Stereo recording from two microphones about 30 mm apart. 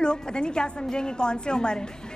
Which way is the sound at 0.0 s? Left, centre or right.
Left.